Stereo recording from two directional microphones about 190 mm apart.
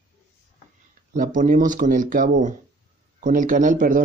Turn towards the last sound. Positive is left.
turn(degrees=-45)  # may be behind; listen again after turning